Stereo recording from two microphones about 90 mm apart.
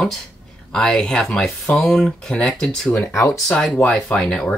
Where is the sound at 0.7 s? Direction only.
10° left (ahead or behind).